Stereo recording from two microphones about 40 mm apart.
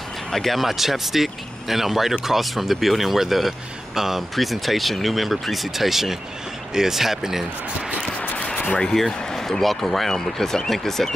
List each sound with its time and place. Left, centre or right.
0.3 s speech: centre
8.2 s a sound: left
8.9 s speech: centre